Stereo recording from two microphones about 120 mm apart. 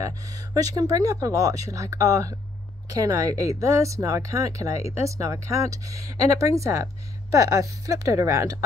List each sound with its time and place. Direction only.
0.6 s speech: 30° right (ahead or behind)